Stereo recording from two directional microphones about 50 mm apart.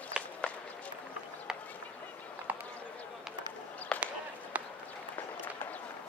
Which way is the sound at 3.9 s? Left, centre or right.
Left.